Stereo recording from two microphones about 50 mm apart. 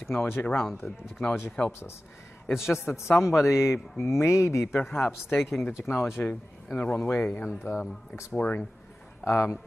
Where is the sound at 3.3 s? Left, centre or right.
Left.